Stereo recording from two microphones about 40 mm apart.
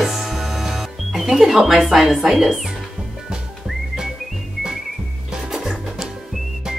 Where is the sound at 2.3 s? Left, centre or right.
Centre.